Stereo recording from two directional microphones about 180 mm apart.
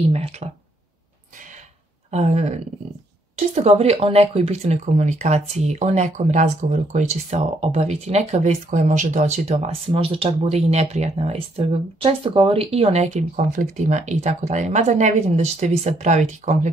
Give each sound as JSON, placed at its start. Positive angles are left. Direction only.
{"t": 0.1, "sound": "speech", "side_deg": -35}
{"t": 2.0, "sound": "speech", "side_deg": -40}